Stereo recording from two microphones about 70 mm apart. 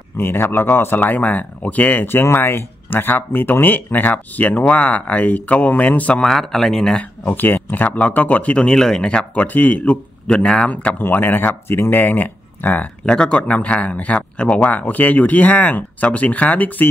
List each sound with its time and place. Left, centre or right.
0.2 s speech: left
6.2 s speech: centre
7.0 s speech: left
10.2 s speech: centre
13.0 s speech: centre